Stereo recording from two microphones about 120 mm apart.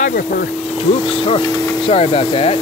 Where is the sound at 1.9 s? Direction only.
55° left (ahead or behind).